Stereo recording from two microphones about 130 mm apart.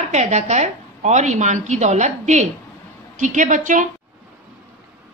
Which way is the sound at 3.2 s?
80° right.